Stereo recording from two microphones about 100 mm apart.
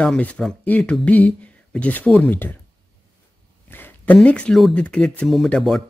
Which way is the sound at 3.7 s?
20° left (ahead or behind).